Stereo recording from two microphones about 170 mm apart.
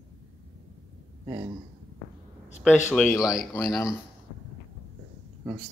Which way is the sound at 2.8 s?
5° left (ahead or behind).